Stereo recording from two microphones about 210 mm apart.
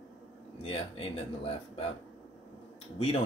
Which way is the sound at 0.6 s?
25° left (ahead or behind).